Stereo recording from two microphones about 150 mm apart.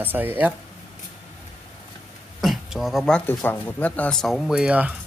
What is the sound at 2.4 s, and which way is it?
Speech, centre (ahead or behind).